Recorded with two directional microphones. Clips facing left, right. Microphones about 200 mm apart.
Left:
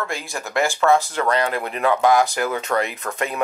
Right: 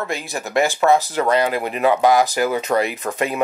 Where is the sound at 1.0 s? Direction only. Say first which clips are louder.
Right 3 dB; 5° right (ahead or behind).